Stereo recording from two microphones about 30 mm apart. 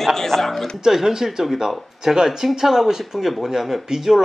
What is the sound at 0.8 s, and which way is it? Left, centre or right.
Speech, centre.